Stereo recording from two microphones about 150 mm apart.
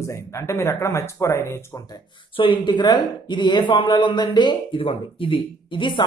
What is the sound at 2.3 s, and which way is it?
Speech, 35° left (ahead or behind).